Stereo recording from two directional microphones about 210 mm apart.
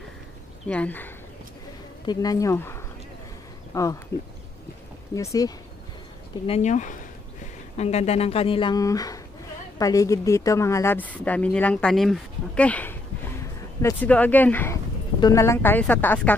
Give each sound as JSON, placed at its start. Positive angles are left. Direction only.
{"t": 0.7, "sound": "speech", "side_deg": 5}
{"t": 5.1, "sound": "speech", "side_deg": 15}
{"t": 6.4, "sound": "speech", "side_deg": 30}